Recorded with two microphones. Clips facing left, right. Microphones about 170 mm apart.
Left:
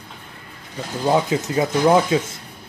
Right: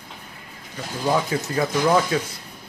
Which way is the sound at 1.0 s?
20° left (ahead or behind).